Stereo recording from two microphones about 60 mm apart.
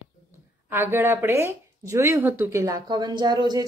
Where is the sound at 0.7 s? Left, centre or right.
Right.